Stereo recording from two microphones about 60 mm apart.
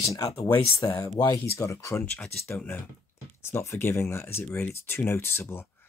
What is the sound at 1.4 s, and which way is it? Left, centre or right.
Speech, left.